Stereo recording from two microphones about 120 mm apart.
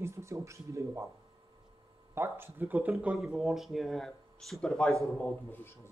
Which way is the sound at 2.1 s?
20° right (ahead or behind).